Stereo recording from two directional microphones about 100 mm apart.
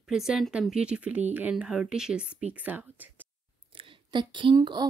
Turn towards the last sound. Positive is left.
turn(degrees=-45)  # may be behind; listen again after turning